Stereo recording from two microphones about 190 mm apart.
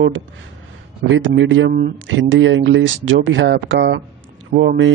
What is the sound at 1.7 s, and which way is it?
Speech, 55° right (ahead or behind).